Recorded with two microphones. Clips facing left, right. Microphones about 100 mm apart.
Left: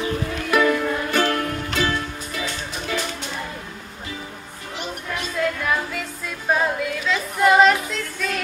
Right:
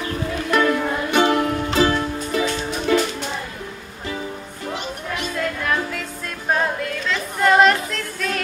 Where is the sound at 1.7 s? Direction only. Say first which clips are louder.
Right 6 dB; 30° right (ahead or behind).